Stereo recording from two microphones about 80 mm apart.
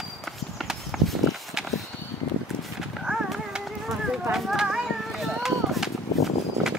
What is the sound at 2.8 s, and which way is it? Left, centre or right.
Horse, centre.